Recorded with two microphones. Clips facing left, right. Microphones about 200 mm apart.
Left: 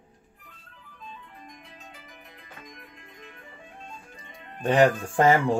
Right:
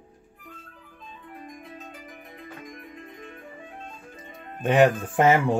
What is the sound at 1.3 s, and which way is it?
Music, 50° right (ahead or behind).